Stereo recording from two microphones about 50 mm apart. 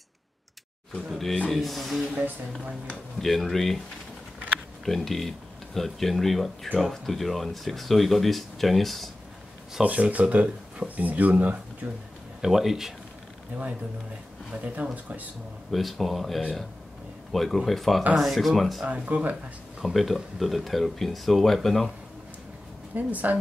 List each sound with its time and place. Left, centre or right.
1.0 s speech: centre
3.2 s speech: centre
4.8 s speech: centre
9.8 s speech: right
12.4 s speech: centre
13.5 s speech: right
15.7 s speech: centre
19.0 s speech: right
19.8 s speech: centre
22.9 s speech: right